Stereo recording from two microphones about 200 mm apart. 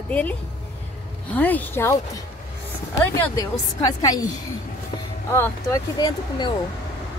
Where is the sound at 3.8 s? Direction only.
20° left (ahead or behind).